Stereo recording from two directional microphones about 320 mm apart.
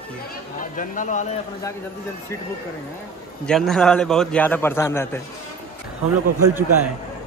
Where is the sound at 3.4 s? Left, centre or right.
Centre.